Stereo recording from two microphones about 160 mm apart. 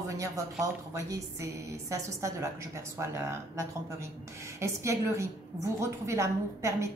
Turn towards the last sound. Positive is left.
turn(degrees=-20)  # may be behind; listen again after turning